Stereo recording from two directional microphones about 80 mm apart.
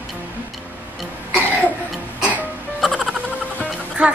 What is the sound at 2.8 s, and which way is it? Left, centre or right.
Music, centre.